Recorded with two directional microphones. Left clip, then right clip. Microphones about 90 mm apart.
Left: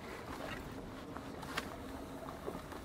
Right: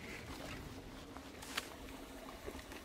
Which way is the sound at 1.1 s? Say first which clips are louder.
Left 2 dB; 25° right (ahead or behind).